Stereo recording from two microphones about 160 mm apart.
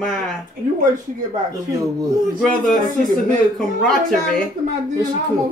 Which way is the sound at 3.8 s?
5° left (ahead or behind).